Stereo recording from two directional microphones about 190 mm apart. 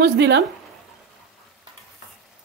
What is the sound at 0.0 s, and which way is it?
Speech, 65° right (ahead or behind).